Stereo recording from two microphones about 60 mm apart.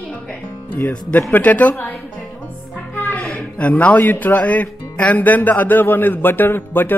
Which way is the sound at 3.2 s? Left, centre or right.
Left.